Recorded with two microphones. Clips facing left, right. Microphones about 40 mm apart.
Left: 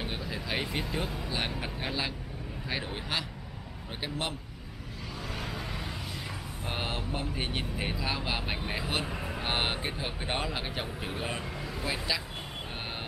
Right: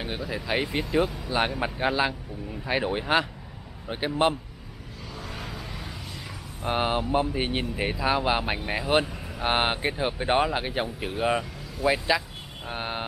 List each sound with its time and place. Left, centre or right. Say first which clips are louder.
0.0 s speech: right 4 dB; centre
5.3 s vehicle: left 2 dB; centre
6.6 s speech: right 10 dB; right
9.0 s vehicle: left 1 dB; centre
9.4 s speech: right 8 dB; right
12.6 s vehicle: right 11 dB; right